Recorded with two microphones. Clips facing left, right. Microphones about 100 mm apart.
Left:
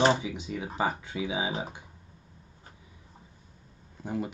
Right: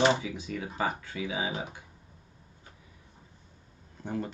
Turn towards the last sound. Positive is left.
turn(degrees=10)  # may be behind; listen again after turning